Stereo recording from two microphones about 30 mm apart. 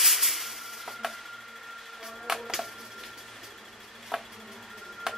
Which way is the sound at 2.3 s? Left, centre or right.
Centre.